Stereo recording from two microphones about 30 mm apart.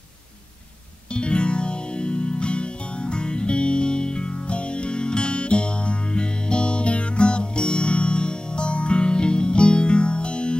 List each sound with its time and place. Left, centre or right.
1.1 s music: left